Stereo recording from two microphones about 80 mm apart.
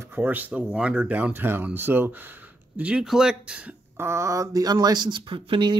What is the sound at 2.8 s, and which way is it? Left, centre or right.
Speech, centre.